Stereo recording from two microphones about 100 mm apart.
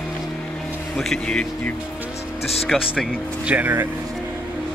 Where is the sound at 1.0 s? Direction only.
5° left (ahead or behind).